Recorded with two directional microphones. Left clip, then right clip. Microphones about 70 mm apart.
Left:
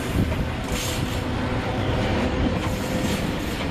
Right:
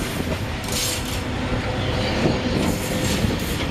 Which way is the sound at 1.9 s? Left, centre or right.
Right.